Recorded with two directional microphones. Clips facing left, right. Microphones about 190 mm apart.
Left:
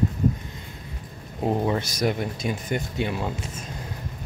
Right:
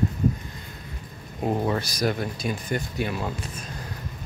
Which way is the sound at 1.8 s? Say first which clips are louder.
Left 1 dB; 25° left (ahead or behind).